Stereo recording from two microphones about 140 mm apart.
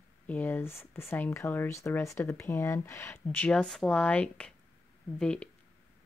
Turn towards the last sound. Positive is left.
turn(degrees=5)  # may be behind; listen again after turning